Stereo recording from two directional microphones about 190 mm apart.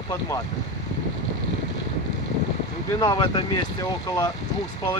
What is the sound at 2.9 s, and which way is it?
Speech, 20° left (ahead or behind).